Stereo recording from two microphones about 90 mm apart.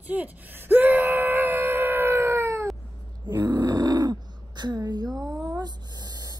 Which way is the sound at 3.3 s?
55° right (ahead or behind).